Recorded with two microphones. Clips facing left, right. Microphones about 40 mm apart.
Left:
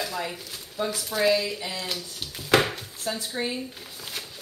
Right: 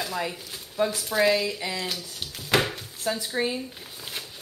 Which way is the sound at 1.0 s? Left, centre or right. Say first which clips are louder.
Left 1 dB; centre.